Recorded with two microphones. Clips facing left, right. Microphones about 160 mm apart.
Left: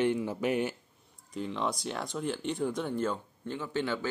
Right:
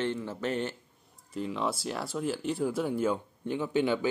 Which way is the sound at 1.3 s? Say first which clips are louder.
Right 1 dB; centre (ahead or behind).